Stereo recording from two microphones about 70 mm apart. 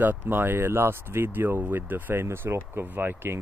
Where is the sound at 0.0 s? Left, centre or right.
Right.